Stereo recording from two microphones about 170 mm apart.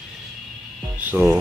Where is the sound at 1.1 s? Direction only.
10° right (ahead or behind).